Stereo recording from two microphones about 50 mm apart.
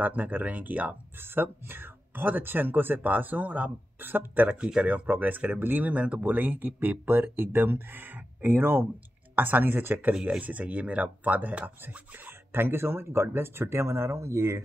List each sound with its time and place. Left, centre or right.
0.0 s speech: right
1.2 s speech: right
4.7 s speech: right
5.9 s speech: right
10.4 s speech: right